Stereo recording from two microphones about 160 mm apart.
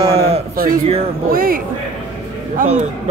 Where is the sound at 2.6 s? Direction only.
60° right (ahead or behind).